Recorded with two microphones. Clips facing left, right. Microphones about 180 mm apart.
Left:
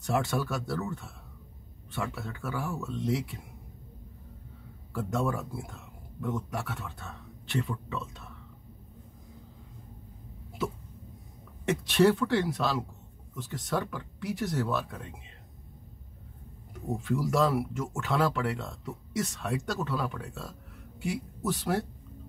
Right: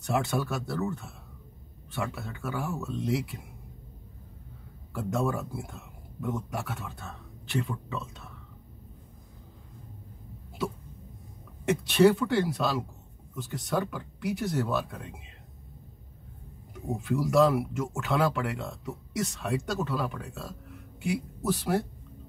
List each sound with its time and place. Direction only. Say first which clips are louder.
0.0 s speech: right 1 dB; centre (ahead or behind)
4.9 s speech: right 1 dB; centre (ahead or behind)
11.9 s speech: right 2 dB; centre (ahead or behind)
17.0 s speech: right 4 dB; centre (ahead or behind)